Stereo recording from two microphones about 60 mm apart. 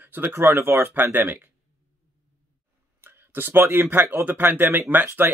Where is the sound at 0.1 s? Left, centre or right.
Right.